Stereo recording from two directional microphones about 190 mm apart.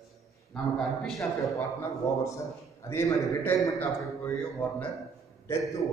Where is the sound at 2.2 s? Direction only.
15° left (ahead or behind).